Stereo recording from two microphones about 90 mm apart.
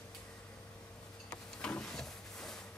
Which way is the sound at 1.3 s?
10° left (ahead or behind).